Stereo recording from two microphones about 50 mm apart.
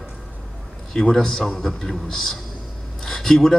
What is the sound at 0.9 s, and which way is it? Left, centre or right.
A man's voice, centre.